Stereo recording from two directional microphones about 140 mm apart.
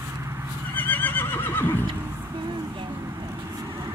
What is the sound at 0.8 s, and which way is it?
Neigh, 10° left (ahead or behind).